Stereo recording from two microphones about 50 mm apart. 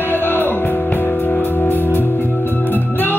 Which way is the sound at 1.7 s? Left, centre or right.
Left.